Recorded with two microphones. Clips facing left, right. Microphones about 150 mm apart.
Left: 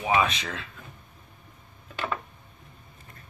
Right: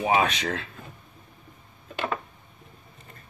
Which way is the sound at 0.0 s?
35° right (ahead or behind).